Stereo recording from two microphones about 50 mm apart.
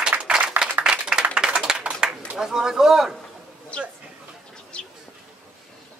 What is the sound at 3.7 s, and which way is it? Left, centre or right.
Chatter, left.